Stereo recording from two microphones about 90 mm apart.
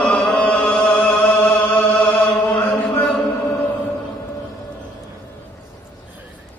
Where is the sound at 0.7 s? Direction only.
15° left (ahead or behind).